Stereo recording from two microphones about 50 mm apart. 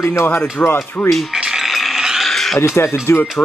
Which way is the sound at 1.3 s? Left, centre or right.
Centre.